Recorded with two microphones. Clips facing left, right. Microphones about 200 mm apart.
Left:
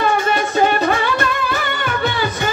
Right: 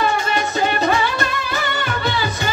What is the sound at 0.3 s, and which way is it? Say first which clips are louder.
Music: left 4 dB; 55° left (ahead or behind).